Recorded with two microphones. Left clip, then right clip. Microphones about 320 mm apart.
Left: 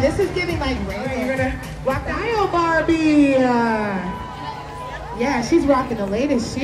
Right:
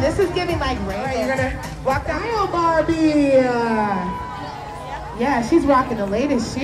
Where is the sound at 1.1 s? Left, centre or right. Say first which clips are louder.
Right 1 dB; right.